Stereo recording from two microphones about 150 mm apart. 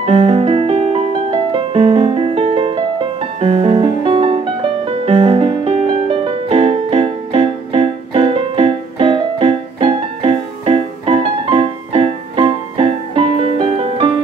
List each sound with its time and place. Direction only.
0.0 s music: 40° right (ahead or behind)